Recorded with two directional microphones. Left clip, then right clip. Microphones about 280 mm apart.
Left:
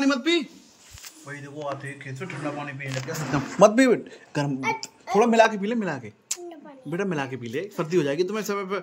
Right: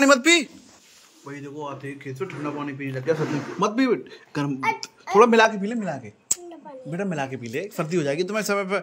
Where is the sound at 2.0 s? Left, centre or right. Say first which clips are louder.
Right 3 dB; centre.